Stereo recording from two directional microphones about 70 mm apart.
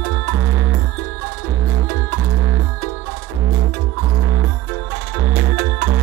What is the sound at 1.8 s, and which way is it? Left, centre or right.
Music, left.